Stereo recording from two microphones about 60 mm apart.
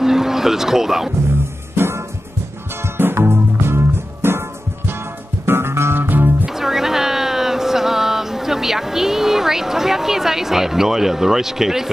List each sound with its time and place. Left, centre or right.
0.0 s music: centre
1.8 s music: right
6.4 s a sound: centre